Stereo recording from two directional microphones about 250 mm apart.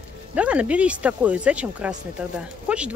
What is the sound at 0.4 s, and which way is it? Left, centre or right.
Speech, centre.